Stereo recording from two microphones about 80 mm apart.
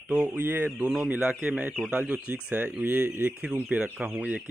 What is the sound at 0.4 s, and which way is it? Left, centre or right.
Speech, right.